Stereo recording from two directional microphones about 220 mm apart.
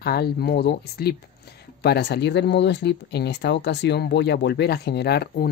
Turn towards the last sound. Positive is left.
turn(degrees=50)  # may be behind; listen again after turning